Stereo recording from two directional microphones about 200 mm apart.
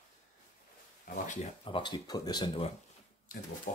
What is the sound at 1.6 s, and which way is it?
Speech, 25° left (ahead or behind).